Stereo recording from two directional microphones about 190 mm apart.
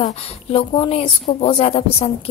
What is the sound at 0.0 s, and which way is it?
A woman's voice, 30° left (ahead or behind).